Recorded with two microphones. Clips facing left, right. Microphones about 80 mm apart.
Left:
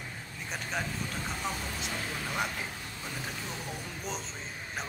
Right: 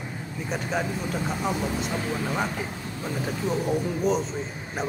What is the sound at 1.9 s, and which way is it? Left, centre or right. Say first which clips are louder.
Speech: right 8 dB; right.